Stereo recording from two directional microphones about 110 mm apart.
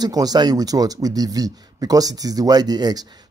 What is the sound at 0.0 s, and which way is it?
A man's voice, 35° right (ahead or behind).